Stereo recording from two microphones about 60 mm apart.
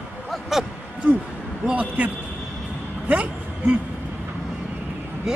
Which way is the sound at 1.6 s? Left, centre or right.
Right.